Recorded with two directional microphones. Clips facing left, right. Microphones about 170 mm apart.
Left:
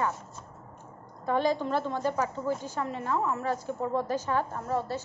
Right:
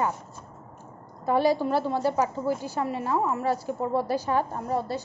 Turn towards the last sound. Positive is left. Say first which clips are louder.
# right 2 dB
turn(degrees=-15)  # may be behind; listen again after turning